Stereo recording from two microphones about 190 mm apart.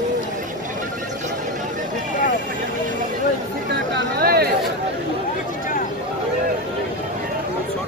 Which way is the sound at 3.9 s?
55° right (ahead or behind).